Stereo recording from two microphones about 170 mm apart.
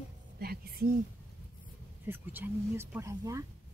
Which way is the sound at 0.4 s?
65° right (ahead or behind).